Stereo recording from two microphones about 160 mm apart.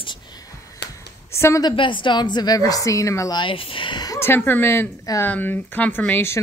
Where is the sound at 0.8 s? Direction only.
90° left.